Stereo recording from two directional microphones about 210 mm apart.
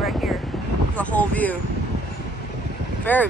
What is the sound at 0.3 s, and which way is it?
Vehicle, centre (ahead or behind).